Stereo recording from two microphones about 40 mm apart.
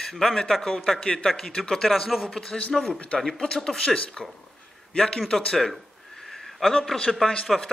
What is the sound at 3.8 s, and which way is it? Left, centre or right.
A man's voice, left.